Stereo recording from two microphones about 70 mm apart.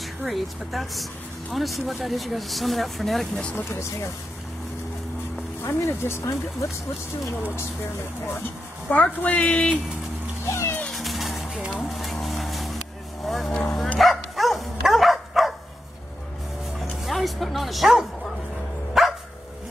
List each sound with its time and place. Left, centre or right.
0.0 s speech: centre
3.3 s speech: centre
5.6 s speech: left
8.3 s speech: left
10.4 s music: left
10.9 s music: centre
11.7 s a sound: centre
13.2 s vehicle: centre
13.9 s dog: centre
17.0 s bow-wow: centre
19.0 s dog: centre